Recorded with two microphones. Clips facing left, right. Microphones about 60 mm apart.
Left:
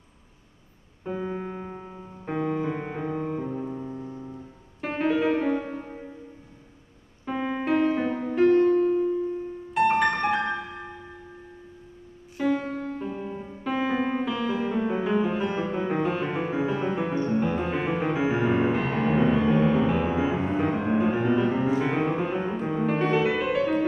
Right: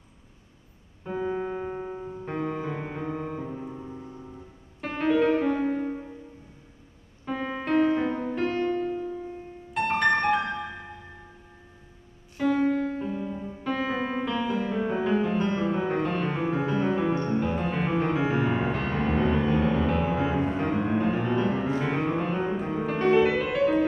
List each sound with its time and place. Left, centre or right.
1.0 s keyboard: centre
1.6 s music: centre
2.2 s music: centre
7.2 s music: centre
12.4 s music: centre
13.1 s music: centre
13.7 s music: centre